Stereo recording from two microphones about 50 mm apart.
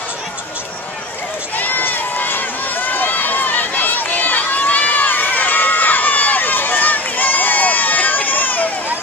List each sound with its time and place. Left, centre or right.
1.6 s run: left